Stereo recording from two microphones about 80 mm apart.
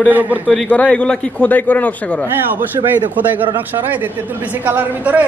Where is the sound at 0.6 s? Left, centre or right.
Centre.